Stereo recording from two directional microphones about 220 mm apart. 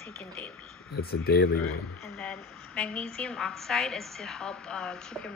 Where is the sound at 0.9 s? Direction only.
45° left (ahead or behind).